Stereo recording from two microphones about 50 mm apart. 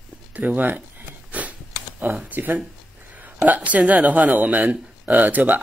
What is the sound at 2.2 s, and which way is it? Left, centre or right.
A woman's voice, right.